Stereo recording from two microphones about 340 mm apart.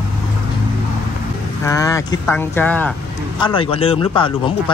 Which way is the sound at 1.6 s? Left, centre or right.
Centre.